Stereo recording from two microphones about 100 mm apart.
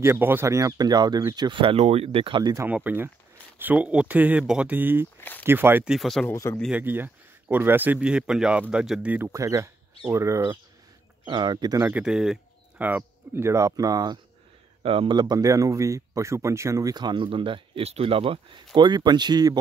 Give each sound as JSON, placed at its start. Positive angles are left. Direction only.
{"t": 0.0, "sound": "speech", "side_deg": -20}
{"t": 2.7, "sound": "speech", "side_deg": -15}
{"t": 5.9, "sound": "speech", "side_deg": 0}
{"t": 6.3, "sound": "speech", "side_deg": 35}
{"t": 6.7, "sound": "speech", "side_deg": -20}
{"t": 9.3, "sound": "speech", "side_deg": -30}
{"t": 11.2, "sound": "speech", "side_deg": -50}
{"t": 11.9, "sound": "speech", "side_deg": -5}
{"t": 12.7, "sound": "speech", "side_deg": -20}
{"t": 14.8, "sound": "speech", "side_deg": -65}